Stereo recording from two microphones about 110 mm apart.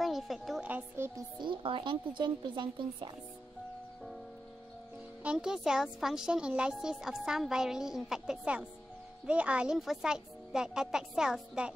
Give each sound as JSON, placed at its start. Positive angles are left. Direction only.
{"t": 0.0, "sound": "a woman's voice", "side_deg": 0}
{"t": 0.7, "sound": "speech", "side_deg": -20}
{"t": 1.4, "sound": "speech", "side_deg": -50}
{"t": 5.2, "sound": "speech", "side_deg": -10}